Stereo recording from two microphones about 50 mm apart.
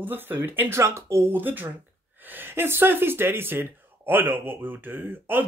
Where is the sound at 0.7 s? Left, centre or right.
Right.